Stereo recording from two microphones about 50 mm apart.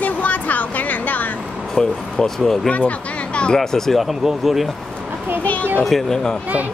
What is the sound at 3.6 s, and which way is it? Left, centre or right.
Speech, centre.